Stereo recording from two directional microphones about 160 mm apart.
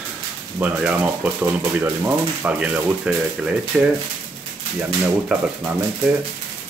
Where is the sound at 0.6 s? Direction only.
10° right (ahead or behind).